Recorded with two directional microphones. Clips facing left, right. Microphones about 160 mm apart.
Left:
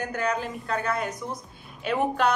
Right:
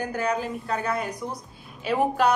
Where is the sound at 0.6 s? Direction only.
10° right (ahead or behind).